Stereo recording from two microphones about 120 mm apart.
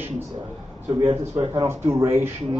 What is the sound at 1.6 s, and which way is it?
Speech, 25° right (ahead or behind).